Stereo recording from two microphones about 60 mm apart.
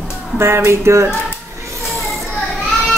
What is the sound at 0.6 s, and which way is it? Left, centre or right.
Speech, right.